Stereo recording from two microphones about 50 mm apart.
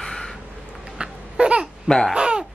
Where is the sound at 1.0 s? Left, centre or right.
Right.